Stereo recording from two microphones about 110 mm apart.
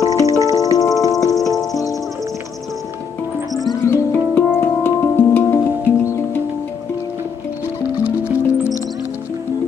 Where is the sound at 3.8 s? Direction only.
25° left (ahead or behind).